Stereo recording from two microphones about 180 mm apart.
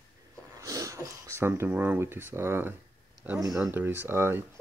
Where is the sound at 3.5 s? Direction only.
5° right (ahead or behind).